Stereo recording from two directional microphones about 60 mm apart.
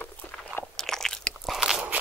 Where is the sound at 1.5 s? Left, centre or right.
Centre.